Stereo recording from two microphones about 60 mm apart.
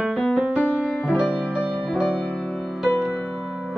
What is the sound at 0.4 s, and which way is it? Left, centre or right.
Music, centre.